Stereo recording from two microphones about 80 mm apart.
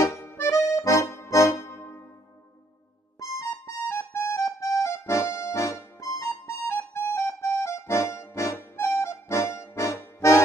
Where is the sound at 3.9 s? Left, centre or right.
Left.